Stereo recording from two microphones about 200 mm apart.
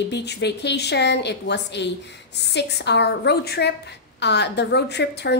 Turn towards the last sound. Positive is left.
turn(degrees=55)  # may be behind; listen again after turning